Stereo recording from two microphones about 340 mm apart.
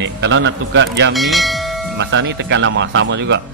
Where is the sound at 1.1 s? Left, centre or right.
Centre.